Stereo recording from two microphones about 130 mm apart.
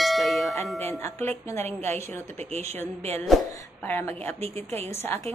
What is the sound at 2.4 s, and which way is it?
Speech, 55° right (ahead or behind).